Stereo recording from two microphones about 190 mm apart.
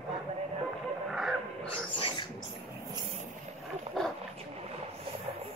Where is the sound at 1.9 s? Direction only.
25° left (ahead or behind).